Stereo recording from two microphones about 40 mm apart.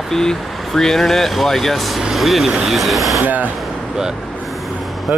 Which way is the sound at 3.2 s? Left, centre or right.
Right.